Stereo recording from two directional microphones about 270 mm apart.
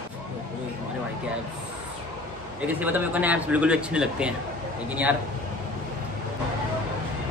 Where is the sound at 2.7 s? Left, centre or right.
Centre.